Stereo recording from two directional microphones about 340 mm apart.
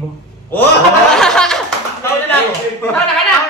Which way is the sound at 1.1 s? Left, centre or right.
Centre.